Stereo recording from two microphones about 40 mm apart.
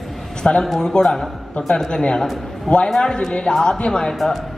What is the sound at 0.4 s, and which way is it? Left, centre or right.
A man's voice, left.